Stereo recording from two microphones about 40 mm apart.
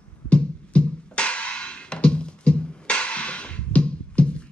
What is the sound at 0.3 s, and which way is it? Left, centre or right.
Music, left.